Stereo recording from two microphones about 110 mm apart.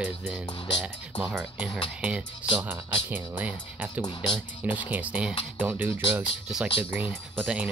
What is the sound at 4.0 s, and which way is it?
Speech, 45° left (ahead or behind).